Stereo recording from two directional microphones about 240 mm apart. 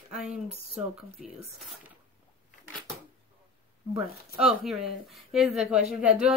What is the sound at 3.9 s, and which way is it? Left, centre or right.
A woman's voice, centre.